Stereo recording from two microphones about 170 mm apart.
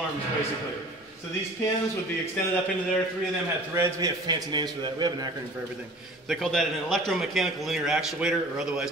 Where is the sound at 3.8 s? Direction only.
15° right (ahead or behind).